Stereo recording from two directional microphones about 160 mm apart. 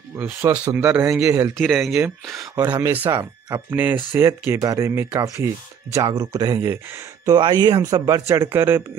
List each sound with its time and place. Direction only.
0.2 s speech: 10° right (ahead or behind)
1.6 s speech: centre (ahead or behind)
2.3 s speech: 25° right (ahead or behind)
2.7 s speech: 10° right (ahead or behind)